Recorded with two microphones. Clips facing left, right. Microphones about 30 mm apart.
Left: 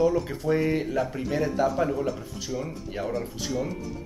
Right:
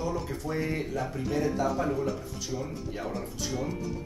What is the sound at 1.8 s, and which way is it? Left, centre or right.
Speech, centre.